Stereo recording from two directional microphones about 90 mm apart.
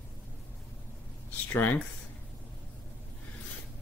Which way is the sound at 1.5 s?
20° left (ahead or behind).